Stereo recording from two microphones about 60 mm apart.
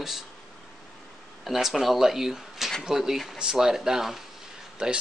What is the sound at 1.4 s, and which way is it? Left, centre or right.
Speech, centre.